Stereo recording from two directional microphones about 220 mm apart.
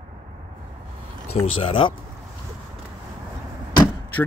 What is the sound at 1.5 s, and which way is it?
Speech, 25° left (ahead or behind).